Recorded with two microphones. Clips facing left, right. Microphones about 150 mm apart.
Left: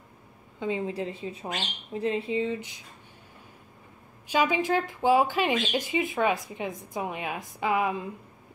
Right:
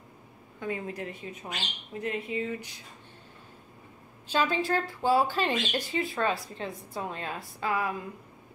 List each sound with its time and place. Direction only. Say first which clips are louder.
0.6 s a woman's voice: left 5 dB; 20° left (ahead or behind)
4.3 s speech: left 3 dB; 15° left (ahead or behind)